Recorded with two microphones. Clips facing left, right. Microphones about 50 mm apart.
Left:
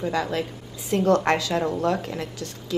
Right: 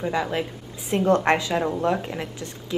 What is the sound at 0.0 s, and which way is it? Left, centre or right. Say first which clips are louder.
A woman's voice: even; centre.